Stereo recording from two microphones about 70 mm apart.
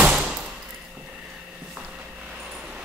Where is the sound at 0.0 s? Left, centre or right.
Centre.